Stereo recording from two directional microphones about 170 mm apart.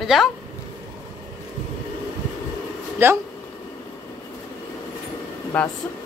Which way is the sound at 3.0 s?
15° right (ahead or behind).